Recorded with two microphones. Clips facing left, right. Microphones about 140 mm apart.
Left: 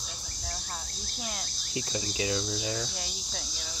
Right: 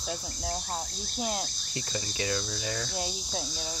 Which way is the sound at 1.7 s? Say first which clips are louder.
Left 2 dB; 10° left (ahead or behind).